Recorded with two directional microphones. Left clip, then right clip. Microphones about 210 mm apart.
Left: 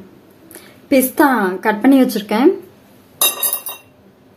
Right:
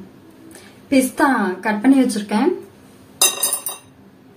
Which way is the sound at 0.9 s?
50° left (ahead or behind).